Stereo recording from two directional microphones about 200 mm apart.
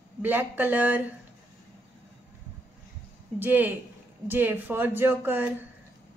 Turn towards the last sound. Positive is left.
turn(degrees=-10)  # may be behind; listen again after turning